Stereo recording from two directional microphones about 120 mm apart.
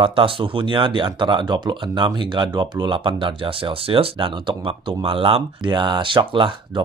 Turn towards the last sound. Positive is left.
turn(degrees=-40)  # may be behind; listen again after turning